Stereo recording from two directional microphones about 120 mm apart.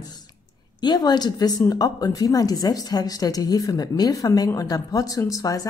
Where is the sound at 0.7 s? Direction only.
35° left (ahead or behind).